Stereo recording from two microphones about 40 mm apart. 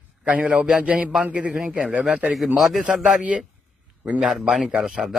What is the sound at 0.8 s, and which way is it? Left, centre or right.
Speech, right.